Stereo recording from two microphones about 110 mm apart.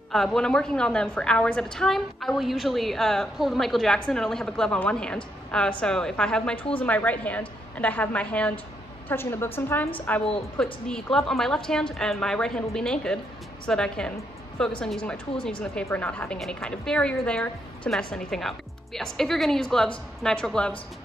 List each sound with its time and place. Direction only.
0.1 s a woman's voice: 5° left (ahead or behind)